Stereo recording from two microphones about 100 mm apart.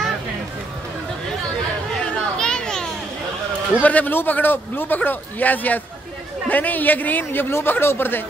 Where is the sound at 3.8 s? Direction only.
15° left (ahead or behind).